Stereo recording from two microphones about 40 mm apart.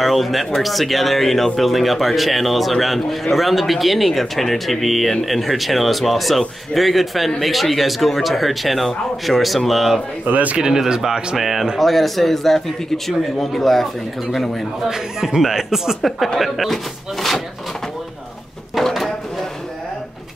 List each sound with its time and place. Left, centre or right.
0.0 s speech: centre
10.2 s a man's voice: right
10.6 s speech: centre
14.9 s speech: centre
18.8 s a sound: centre